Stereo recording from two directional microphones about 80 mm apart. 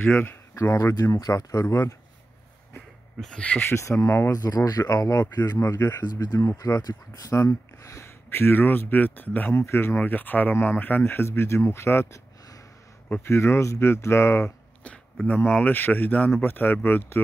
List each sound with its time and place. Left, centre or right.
0.6 s speech: left
3.2 s speech: centre
3.6 s speech: left
4.3 s speech: left
5.2 s speech: left
6.2 s speech: left
6.5 s speech: left
7.4 s speech: left
9.6 s speech: left
9.9 s speech: left
15.2 s speech: centre